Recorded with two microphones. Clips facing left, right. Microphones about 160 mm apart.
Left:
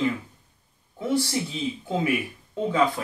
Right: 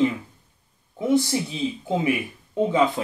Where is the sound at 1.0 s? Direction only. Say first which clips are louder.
Right 4 dB; 20° right (ahead or behind).